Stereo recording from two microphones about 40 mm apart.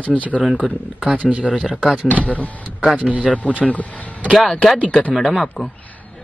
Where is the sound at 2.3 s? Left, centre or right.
Left.